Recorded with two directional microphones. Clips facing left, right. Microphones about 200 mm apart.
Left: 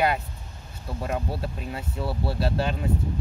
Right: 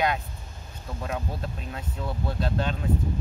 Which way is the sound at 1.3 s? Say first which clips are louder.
Left 3 dB; 5° left (ahead or behind).